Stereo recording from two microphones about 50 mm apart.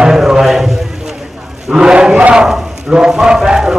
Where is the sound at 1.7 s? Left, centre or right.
Centre.